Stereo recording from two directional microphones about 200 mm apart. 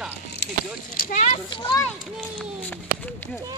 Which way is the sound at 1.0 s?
40° left (ahead or behind).